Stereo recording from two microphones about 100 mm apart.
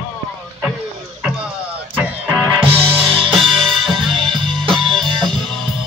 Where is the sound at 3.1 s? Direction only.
60° right (ahead or behind).